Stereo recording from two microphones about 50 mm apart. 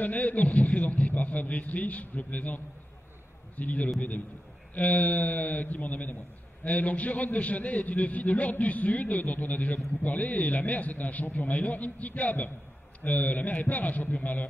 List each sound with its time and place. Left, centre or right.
0.0 s a man's voice: left